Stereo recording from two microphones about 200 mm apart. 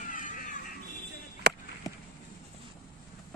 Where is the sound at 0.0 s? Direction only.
40° left (ahead or behind).